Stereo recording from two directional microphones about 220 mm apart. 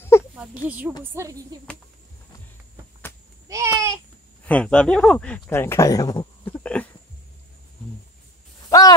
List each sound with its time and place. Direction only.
0.4 s speech: 5° right (ahead or behind)
3.4 s babbling: 15° right (ahead or behind)
4.5 s speech: 5° left (ahead or behind)
8.6 s a sound: 15° left (ahead or behind)